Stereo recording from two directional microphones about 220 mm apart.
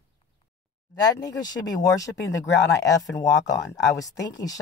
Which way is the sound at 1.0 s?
15° left (ahead or behind).